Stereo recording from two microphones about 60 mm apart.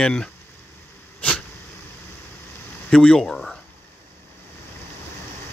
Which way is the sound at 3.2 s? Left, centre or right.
Centre.